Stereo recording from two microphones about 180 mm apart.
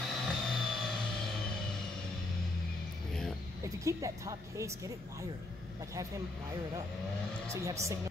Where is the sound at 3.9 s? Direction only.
15° right (ahead or behind).